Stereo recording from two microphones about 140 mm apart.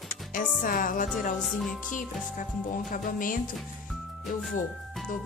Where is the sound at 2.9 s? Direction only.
75° left (ahead or behind).